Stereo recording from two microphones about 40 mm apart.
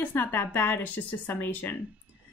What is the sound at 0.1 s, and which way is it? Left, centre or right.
A woman's voice, left.